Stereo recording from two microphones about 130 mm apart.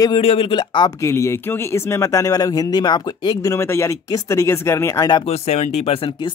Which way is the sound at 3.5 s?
20° left (ahead or behind).